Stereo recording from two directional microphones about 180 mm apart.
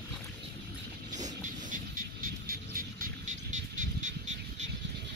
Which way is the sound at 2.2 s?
50° right (ahead or behind).